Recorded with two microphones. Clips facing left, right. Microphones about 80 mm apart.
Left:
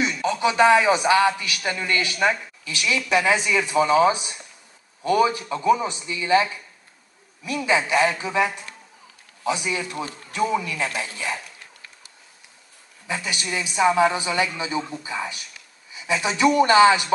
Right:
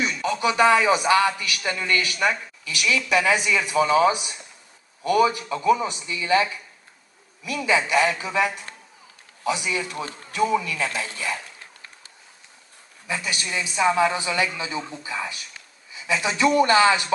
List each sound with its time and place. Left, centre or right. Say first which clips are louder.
0.0 s a man's voice: left 1 dB; left
13.0 s a man's voice: even; left